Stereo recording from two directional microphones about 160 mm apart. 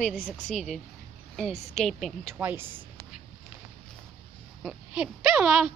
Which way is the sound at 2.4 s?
15° right (ahead or behind).